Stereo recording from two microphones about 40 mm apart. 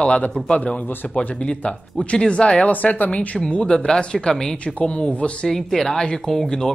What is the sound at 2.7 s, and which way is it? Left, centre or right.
Speech, left.